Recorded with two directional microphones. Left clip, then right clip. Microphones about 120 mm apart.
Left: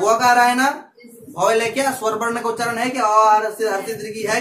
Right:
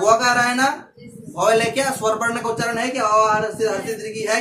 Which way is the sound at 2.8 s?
Centre (ahead or behind).